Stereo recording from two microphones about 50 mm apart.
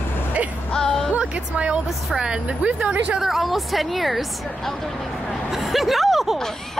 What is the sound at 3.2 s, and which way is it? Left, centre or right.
A woman's voice, centre.